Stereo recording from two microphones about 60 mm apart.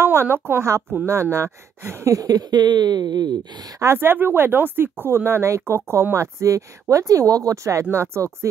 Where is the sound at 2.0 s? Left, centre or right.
Right.